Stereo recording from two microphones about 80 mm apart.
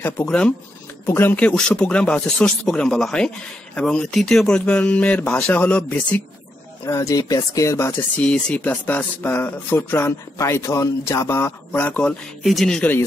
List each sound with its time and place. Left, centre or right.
0.2 s speech: centre
1.0 s speech: left
6.9 s speech: left
8.2 s speech: centre
10.3 s speech: left
11.8 s speech: centre
12.4 s speech: centre